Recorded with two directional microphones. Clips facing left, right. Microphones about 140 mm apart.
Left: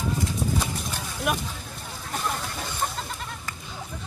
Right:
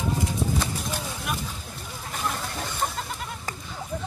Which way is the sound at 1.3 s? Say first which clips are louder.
Left 6 dB; 50° left (ahead or behind).